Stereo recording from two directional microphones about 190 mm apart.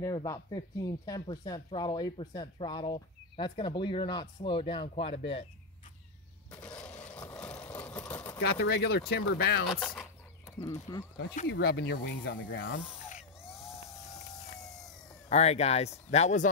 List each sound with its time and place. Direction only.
0.0 s speech: 20° left (ahead or behind)
6.5 s a sound: 5° left (ahead or behind)
7.1 s vehicle: 5° left (ahead or behind)
8.4 s speech: 60° left (ahead or behind)
9.7 s speech: centre (ahead or behind)
10.6 s speech: 20° left (ahead or behind)
11.4 s speech: 65° left (ahead or behind)
15.2 s speech: 35° left (ahead or behind)